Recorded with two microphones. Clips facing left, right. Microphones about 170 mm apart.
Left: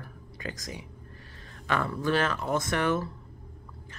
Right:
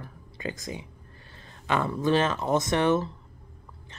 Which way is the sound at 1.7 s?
20° right (ahead or behind).